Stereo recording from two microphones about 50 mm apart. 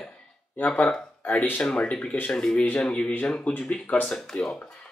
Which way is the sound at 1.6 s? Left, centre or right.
Centre.